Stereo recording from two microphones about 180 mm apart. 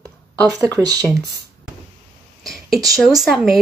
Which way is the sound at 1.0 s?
Centre (ahead or behind).